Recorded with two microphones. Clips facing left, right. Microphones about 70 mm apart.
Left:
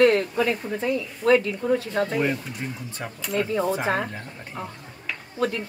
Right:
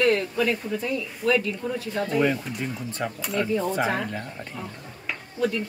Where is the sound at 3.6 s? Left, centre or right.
Left.